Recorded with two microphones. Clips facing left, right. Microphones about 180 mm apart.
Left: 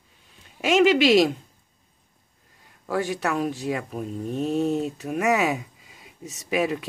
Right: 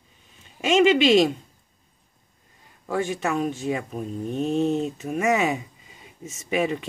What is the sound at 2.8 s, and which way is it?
Speech, centre (ahead or behind).